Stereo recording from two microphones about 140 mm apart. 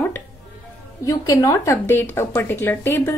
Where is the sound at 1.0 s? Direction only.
25° left (ahead or behind).